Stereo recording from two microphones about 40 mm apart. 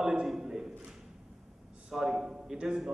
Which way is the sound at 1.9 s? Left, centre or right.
Centre.